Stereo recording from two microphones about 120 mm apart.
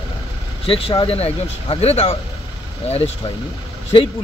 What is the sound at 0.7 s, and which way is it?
Speech, 50° left (ahead or behind).